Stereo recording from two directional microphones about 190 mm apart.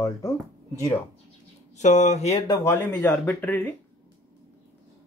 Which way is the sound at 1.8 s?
40° left (ahead or behind).